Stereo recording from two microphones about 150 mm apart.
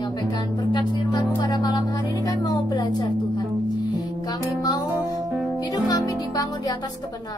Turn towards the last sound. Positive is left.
turn(degrees=25)  # may be behind; listen again after turning